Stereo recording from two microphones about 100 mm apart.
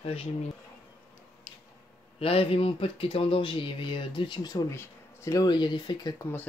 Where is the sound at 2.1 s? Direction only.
70° left (ahead or behind).